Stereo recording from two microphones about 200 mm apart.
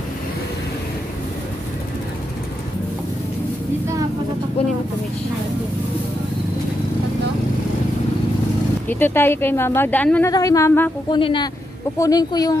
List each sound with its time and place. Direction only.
8.8 s speech: 10° left (ahead or behind)
11.1 s speech: 25° left (ahead or behind)